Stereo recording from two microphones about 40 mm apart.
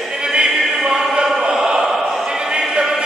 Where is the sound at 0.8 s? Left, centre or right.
Centre.